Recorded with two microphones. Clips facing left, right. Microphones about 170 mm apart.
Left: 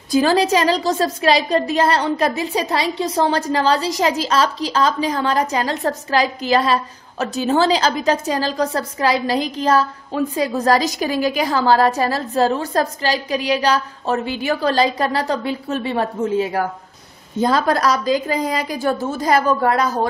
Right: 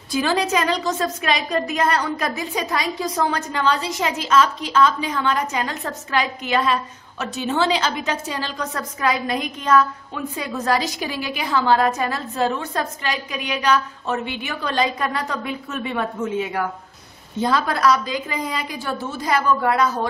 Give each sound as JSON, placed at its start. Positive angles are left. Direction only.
{"t": 0.1, "sound": "a woman's voice", "side_deg": 40}